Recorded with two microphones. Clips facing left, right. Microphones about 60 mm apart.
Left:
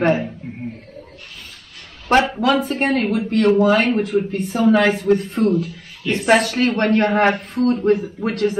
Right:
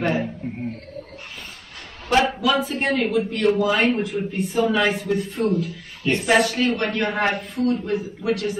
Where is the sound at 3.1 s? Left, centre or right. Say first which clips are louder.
Left 6 dB; left.